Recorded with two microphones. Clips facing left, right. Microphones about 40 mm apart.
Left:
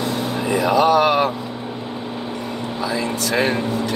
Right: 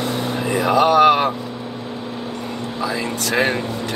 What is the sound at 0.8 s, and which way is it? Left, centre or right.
Speech, centre.